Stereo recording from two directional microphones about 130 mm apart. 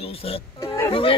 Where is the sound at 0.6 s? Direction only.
25° left (ahead or behind).